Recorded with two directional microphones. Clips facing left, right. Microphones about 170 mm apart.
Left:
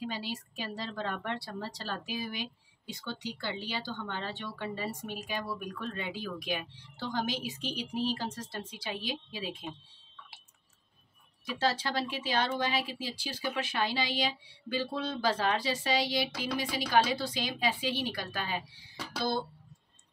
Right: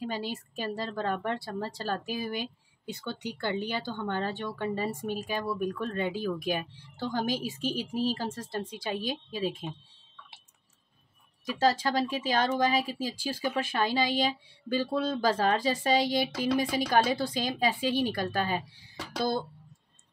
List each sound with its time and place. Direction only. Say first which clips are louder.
0.0 s a woman's voice: right 3 dB; 50° right (ahead or behind)
2.9 s a woman's voice: right 3 dB; 60° right (ahead or behind)
11.6 s a woman's voice: right 5 dB; 45° right (ahead or behind)